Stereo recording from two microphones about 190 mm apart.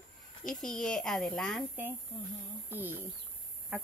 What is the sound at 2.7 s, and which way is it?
Speech, 10° right (ahead or behind).